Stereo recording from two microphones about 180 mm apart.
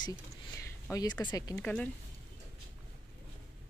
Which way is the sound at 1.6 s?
5° left (ahead or behind).